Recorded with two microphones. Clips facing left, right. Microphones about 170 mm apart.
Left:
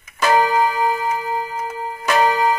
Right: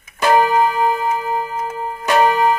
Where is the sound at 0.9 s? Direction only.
60° right (ahead or behind).